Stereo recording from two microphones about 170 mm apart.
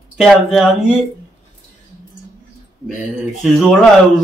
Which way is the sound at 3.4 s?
Centre (ahead or behind).